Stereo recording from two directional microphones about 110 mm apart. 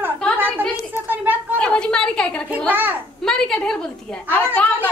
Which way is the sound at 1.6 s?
10° left (ahead or behind).